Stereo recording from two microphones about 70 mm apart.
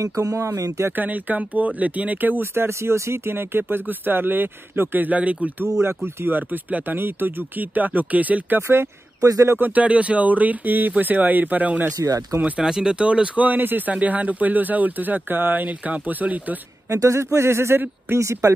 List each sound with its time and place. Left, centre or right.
0.0 s speech: right
0.9 s speech: right
5.8 s speech: right
8.6 s speech: right
9.6 s speech: centre
12.0 s speech: right
12.4 s speech: right
12.6 s speech: centre
16.9 s speech: right